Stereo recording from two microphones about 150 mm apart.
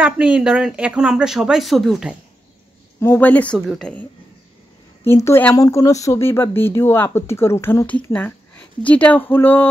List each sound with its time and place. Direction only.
0.0 s speech: 5° right (ahead or behind)
3.0 s speech: 10° left (ahead or behind)
5.0 s speech: 15° left (ahead or behind)